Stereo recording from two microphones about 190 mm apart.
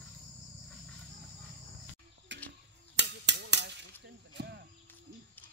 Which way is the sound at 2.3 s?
70° right (ahead or behind).